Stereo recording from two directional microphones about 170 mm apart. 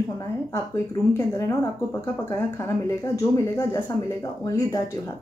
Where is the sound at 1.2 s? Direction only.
20° left (ahead or behind).